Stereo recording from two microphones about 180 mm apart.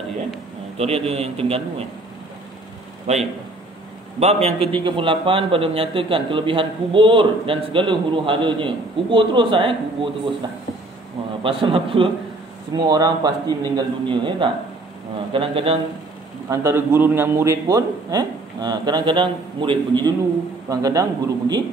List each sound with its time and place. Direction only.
0.7 s a man's voice: 35° right (ahead or behind)
3.1 s a man's voice: 35° right (ahead or behind)
11.4 s a man's voice: 30° right (ahead or behind)
16.4 s a man's voice: 15° right (ahead or behind)